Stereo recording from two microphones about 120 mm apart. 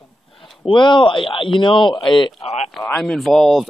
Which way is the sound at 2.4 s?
60° left (ahead or behind).